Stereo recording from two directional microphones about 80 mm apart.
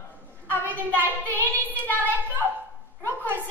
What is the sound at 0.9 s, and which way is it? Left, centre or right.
Child singing, left.